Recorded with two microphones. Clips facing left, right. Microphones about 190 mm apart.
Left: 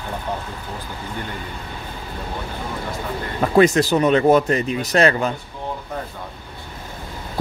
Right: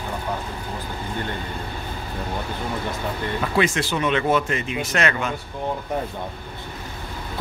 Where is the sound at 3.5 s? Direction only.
40° left (ahead or behind).